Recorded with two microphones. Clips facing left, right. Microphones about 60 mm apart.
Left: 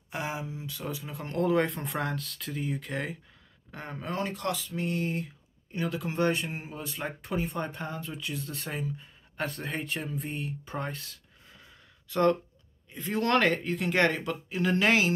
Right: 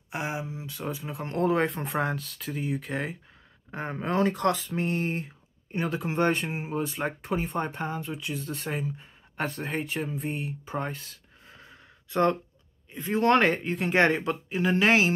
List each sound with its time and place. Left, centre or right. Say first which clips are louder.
0.1 s speech: right 2 dB; right
3.7 s speech: right 6 dB; right
4.1 s speech: right 7 dB; right; by 8.4 s centre
8.4 s speech: right 3 dB; right